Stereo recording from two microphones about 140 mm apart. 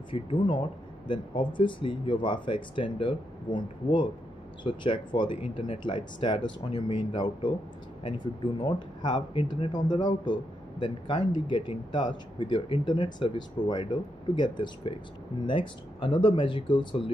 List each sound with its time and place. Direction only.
0.1 s speech: 35° left (ahead or behind)